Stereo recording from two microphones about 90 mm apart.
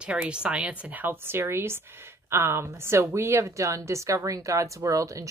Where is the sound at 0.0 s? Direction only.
10° right (ahead or behind).